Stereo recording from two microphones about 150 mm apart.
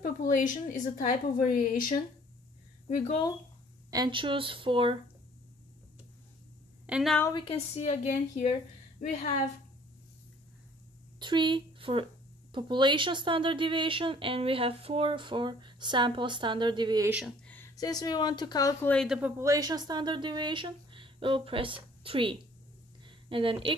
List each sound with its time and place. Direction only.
0.0 s a woman's voice: 60° left (ahead or behind)
2.9 s speech: 50° left (ahead or behind)
3.9 s speech: 30° right (ahead or behind)
6.9 s a woman's voice: centre (ahead or behind)
7.3 s a woman's voice: 40° left (ahead or behind)
11.1 s speech: 30° right (ahead or behind)
17.7 s a woman's voice: 25° left (ahead or behind)
19.0 s speech: 10° right (ahead or behind); by 22.4 s 35° right (ahead or behind)
23.0 s a sound: 35° right (ahead or behind)